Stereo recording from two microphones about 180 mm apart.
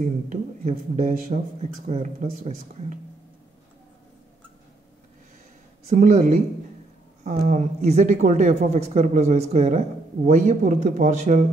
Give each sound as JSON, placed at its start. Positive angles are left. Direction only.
{"t": 0.0, "sound": "speech", "side_deg": -45}
{"t": 5.9, "sound": "a woman's voice", "side_deg": -45}